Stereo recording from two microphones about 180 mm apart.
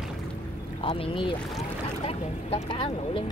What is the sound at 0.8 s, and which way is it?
Speech, 30° left (ahead or behind).